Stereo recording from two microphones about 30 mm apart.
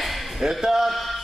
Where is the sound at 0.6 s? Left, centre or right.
Centre.